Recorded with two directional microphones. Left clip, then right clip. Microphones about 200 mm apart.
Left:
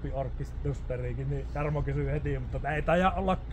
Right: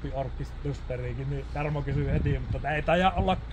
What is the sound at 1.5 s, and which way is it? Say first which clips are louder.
A man's voice: right 1 dB; 5° right (ahead or behind).